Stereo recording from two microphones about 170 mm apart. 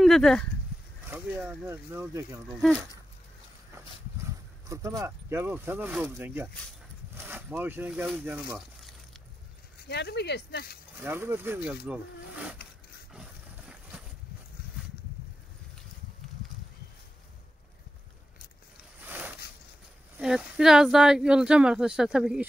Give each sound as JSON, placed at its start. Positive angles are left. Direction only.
{"t": 0.0, "sound": "speech", "side_deg": 0}
{"t": 1.1, "sound": "speech", "side_deg": -10}
{"t": 2.5, "sound": "speech", "side_deg": 0}
{"t": 4.6, "sound": "speech", "side_deg": -20}
{"t": 9.8, "sound": "speech", "side_deg": 75}
{"t": 11.0, "sound": "speech", "side_deg": -15}
{"t": 13.1, "sound": "a sound", "side_deg": -5}
{"t": 18.9, "sound": "a sound", "side_deg": -10}
{"t": 20.2, "sound": "speech", "side_deg": -5}